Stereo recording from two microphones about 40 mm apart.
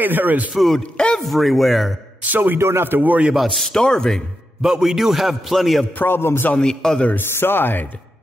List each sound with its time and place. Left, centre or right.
0.0 s a man's voice: right
0.6 s a man's voice: centre
2.2 s a man's voice: right
2.6 s speech: right
3.0 s a man's voice: right
3.3 s a man's voice: centre
3.6 s speech: centre
4.6 s a man's voice: centre
4.8 s a man's voice: centre
5.9 s a man's voice: left
6.6 s speech: centre
7.2 s speech: left